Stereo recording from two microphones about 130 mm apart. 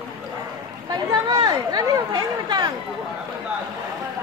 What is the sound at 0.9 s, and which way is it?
Chatter, 35° right (ahead or behind).